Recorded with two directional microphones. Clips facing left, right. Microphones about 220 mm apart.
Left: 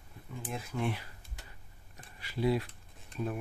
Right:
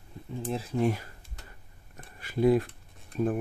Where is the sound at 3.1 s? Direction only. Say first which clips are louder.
Right 8 dB; 50° right (ahead or behind).